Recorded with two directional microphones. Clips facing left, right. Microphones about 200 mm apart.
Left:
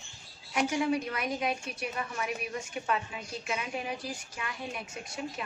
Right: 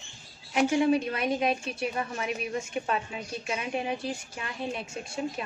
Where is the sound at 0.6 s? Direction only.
25° right (ahead or behind).